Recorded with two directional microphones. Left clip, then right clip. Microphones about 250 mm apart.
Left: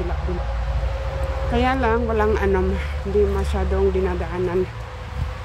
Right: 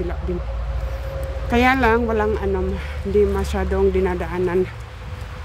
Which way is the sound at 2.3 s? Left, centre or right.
Centre.